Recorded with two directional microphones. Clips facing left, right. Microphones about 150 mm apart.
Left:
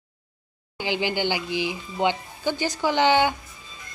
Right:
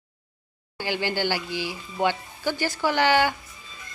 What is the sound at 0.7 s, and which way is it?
A woman's voice, 15° left (ahead or behind).